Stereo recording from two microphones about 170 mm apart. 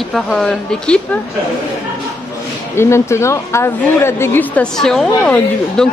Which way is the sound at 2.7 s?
15° left (ahead or behind).